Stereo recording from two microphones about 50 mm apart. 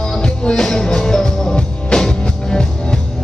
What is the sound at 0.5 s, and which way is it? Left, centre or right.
Music, centre.